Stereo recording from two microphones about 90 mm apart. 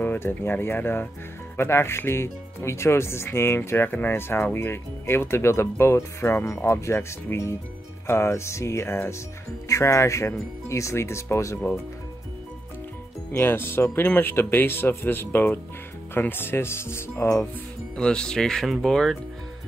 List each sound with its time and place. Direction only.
0.0 s speech: 20° left (ahead or behind)
13.3 s speech: 25° left (ahead or behind)
17.9 s speech: 10° left (ahead or behind)